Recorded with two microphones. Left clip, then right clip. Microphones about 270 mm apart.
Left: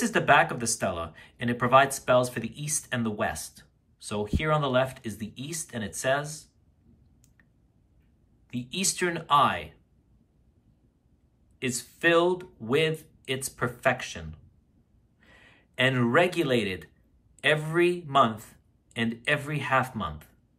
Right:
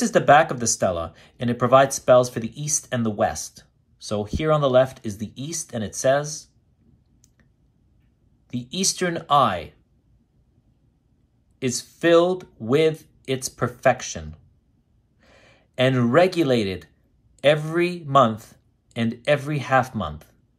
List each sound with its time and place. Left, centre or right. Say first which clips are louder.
0.0 s speech: right 6 dB; centre
8.5 s speech: right 5 dB; centre
11.6 s speech: right 4 dB; centre